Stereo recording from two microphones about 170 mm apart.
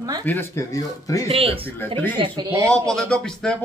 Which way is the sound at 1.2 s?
35° right (ahead or behind).